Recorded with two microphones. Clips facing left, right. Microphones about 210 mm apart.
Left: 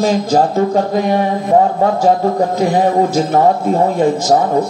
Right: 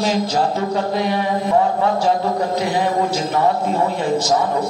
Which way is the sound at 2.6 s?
45° left (ahead or behind).